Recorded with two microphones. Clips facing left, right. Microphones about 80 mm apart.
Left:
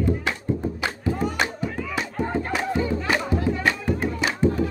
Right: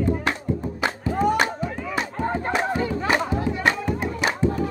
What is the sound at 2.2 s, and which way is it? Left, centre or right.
Music, centre.